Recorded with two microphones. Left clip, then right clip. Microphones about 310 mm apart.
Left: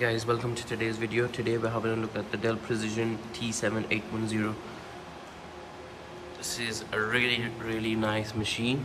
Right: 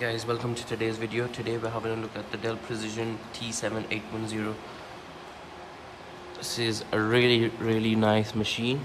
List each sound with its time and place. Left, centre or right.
0.0 s speech: centre
6.4 s speech: centre